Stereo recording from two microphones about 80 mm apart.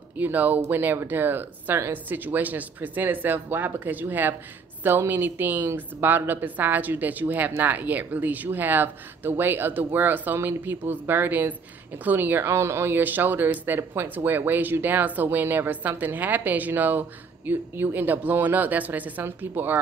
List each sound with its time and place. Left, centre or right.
0.2 s a woman's voice: right